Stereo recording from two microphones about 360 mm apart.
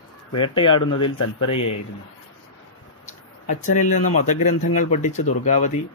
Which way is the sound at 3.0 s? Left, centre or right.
Left.